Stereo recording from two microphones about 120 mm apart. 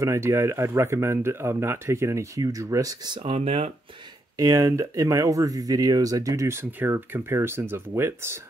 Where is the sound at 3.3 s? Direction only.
55° right (ahead or behind).